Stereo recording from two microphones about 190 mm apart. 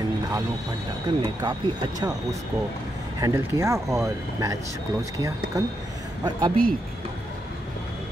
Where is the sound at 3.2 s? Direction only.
15° right (ahead or behind).